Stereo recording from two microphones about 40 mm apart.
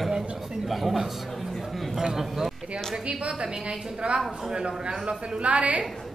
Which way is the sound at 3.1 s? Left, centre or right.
Right.